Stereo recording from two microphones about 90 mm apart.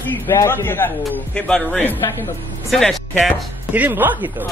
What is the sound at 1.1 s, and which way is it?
A man's voice, 15° left (ahead or behind).